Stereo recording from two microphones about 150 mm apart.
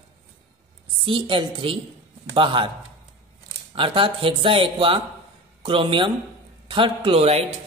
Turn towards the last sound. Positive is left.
turn(degrees=-40)  # may be behind; listen again after turning